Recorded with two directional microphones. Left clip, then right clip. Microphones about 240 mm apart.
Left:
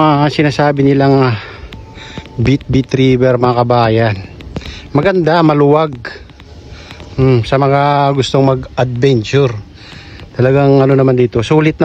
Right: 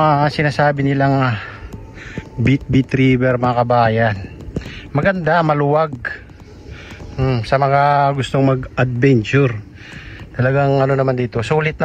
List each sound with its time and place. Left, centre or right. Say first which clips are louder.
0.0 s a man's voice: left 4 dB; left
2.1 s a man's voice: left 4 dB; centre
7.2 s a man's voice: left 5 dB; left
10.4 s a man's voice: left 6 dB; left